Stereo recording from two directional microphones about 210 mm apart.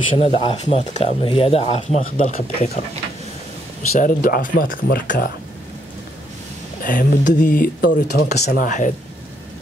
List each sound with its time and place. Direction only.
0.1 s speech: 30° left (ahead or behind)
3.9 s speech: 45° left (ahead or behind)
6.8 s speech: 40° left (ahead or behind)